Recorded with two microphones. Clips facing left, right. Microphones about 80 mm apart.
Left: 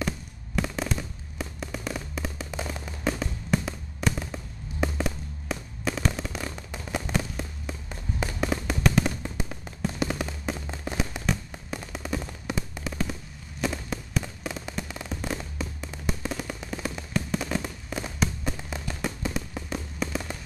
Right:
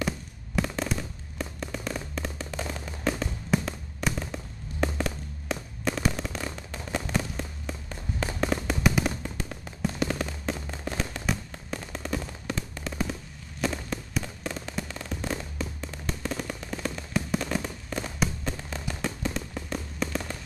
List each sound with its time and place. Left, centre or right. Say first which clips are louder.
0.6 s fireworks: even; centre
8.6 s fireworks: left 1 dB; centre
12.4 s a sound: left 1 dB; centre
13.6 s fireworks: even; centre